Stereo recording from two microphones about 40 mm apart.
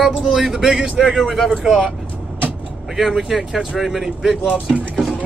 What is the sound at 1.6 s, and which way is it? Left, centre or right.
Speech, centre.